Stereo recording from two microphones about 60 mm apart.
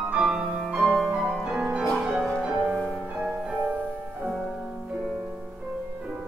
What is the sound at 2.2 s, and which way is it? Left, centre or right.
Music, centre.